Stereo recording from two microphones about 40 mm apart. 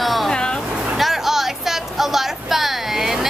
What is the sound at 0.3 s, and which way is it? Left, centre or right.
Vehicle, left.